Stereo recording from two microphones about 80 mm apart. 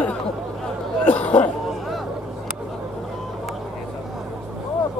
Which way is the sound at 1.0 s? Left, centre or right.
Centre.